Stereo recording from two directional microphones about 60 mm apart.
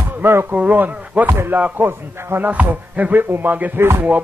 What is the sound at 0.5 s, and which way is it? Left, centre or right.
A man's voice, right.